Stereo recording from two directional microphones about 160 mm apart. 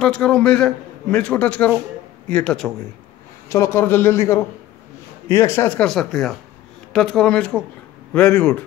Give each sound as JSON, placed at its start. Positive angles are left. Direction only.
{"t": 0.0, "sound": "a man's voice", "side_deg": 5}
{"t": 3.4, "sound": "a man's voice", "side_deg": 20}